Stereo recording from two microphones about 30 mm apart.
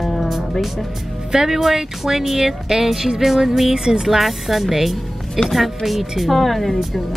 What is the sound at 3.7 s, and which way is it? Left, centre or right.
Speech, centre.